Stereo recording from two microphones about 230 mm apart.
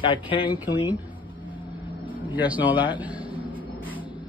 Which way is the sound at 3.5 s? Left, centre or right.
Centre.